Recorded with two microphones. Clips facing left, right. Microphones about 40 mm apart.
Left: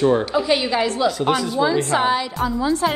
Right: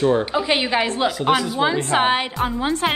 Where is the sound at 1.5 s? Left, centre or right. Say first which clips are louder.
Left 1 dB; right.